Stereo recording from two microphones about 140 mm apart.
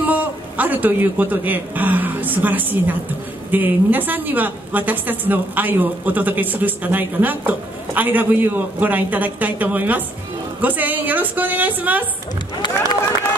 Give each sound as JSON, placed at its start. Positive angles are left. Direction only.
{"t": 0.1, "sound": "a man's voice", "side_deg": -10}
{"t": 12.6, "sound": "speech", "side_deg": 35}